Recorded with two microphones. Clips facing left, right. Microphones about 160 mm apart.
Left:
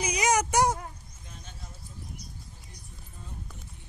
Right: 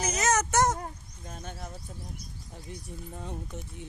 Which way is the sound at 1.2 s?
45° right (ahead or behind).